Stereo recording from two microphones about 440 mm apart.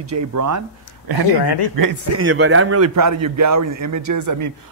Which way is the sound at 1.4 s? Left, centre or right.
Left.